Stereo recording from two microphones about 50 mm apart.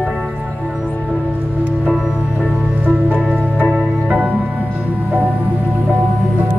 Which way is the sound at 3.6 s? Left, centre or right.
Right.